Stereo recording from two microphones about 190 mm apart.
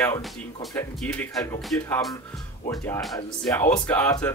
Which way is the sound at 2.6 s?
15° left (ahead or behind).